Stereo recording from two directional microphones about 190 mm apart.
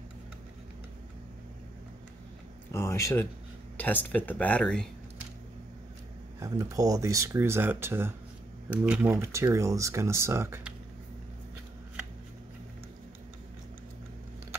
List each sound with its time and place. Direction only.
2.7 s speech: 15° left (ahead or behind)
6.4 s speech: 15° right (ahead or behind)